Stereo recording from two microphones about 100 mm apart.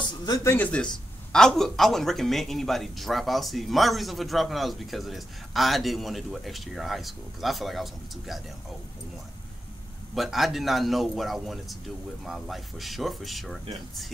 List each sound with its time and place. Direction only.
0.2 s speech: 40° left (ahead or behind)
0.5 s a man's voice: 15° left (ahead or behind); by 8.4 s centre (ahead or behind)
10.1 s a man's voice: centre (ahead or behind)